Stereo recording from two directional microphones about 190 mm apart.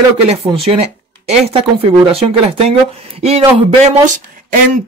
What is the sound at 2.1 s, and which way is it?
Speech, 30° right (ahead or behind).